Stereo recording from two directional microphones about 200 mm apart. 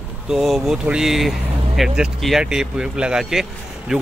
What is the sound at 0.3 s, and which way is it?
Speech, centre (ahead or behind).